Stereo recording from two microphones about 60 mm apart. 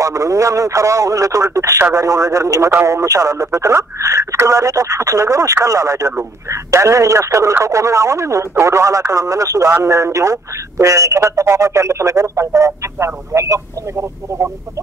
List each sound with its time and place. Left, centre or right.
0.0 s speech: right
2.0 s speech: right
6.5 s speech: right